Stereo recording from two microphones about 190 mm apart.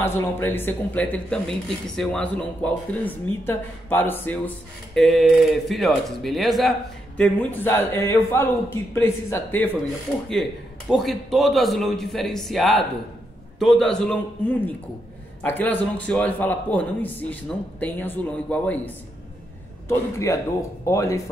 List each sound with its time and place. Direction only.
0.0 s a man's voice: 10° left (ahead or behind)
10.9 s a man's voice: centre (ahead or behind)
19.9 s a man's voice: 15° left (ahead or behind)